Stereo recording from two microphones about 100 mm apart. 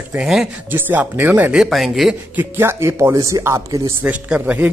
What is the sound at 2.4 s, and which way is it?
Speech, 25° right (ahead or behind).